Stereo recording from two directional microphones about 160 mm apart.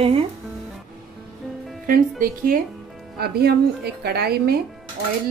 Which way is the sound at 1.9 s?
60° right (ahead or behind).